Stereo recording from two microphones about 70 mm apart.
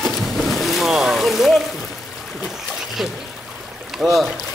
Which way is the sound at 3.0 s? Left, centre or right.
Centre.